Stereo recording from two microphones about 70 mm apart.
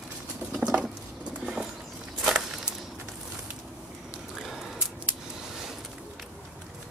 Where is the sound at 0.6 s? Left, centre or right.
Centre.